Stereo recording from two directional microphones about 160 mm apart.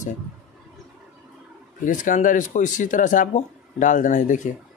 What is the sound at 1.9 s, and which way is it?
Speech, 55° left (ahead or behind).